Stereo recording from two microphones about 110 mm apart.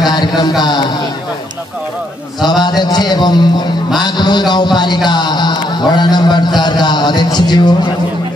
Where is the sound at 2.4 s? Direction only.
40° left (ahead or behind).